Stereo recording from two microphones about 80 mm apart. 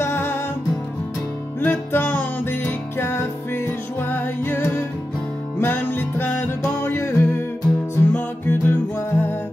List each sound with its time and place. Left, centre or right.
0.0 s music: left
1.6 s music: left